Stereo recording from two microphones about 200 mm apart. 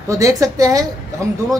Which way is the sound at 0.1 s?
15° right (ahead or behind).